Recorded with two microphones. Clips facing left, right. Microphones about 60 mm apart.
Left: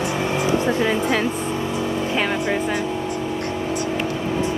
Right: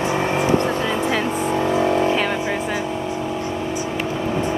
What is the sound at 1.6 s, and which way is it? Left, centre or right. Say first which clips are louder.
Vehicle: right 8 dB; right.